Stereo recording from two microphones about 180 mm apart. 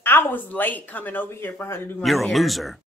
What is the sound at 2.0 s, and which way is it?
Speech, centre (ahead or behind).